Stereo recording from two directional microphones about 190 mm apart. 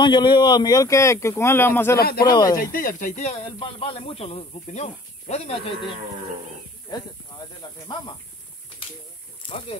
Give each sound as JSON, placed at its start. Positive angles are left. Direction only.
{"t": 0.0, "sound": "speech", "side_deg": 25}
{"t": 2.0, "sound": "speech", "side_deg": 55}
{"t": 7.6, "sound": "speech", "side_deg": 20}